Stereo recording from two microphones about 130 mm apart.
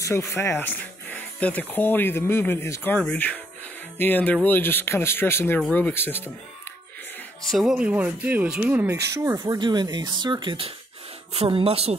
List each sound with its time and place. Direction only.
0.3 s speech: 20° left (ahead or behind)
7.5 s speech: 5° right (ahead or behind); by 9.4 s 20° right (ahead or behind)
9.5 s speech: 35° right (ahead or behind); by 12.0 s 50° right (ahead or behind)